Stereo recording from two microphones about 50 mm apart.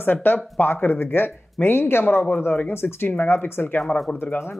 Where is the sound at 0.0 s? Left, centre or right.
Left.